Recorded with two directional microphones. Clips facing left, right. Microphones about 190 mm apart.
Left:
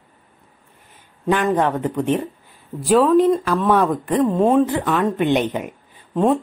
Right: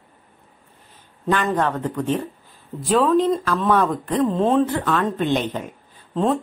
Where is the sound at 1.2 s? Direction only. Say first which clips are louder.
Left 3 dB; 10° left (ahead or behind).